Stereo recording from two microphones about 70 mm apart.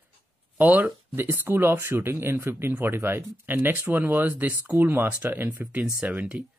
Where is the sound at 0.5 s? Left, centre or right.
Right.